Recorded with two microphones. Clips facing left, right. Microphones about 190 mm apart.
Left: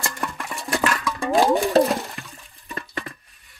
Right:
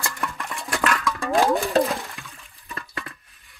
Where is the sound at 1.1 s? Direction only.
15° left (ahead or behind).